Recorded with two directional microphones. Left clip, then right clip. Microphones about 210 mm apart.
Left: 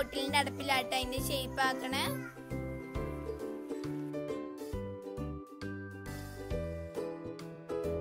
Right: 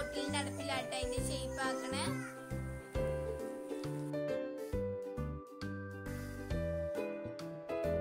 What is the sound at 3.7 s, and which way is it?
Music, centre (ahead or behind).